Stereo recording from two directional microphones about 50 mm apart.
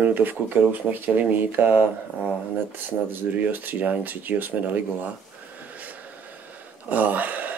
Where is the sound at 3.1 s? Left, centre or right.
Right.